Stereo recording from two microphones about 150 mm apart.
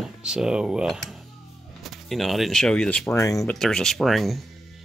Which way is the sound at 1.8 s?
Centre (ahead or behind).